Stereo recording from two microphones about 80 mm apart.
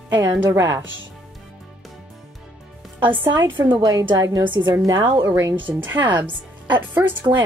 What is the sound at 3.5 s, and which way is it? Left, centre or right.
Speech, right.